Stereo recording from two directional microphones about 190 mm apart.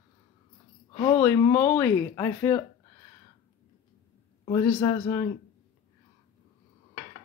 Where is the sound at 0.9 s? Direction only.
15° left (ahead or behind).